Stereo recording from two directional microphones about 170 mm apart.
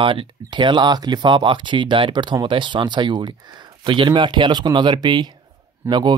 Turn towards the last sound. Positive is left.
turn(degrees=-25)  # may be behind; listen again after turning